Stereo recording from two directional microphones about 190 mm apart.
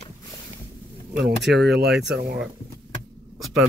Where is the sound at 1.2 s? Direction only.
60° right (ahead or behind).